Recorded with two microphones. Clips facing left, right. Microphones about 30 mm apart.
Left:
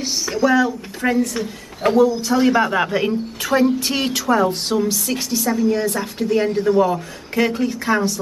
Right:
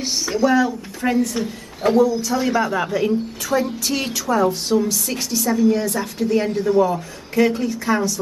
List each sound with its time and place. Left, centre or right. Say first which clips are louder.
0.0 s speech: even; centre
2.0 s speech: left 3 dB; left
5.4 s speech: right 2 dB; centre